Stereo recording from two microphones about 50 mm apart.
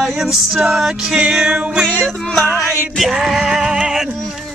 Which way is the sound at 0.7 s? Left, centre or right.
Centre.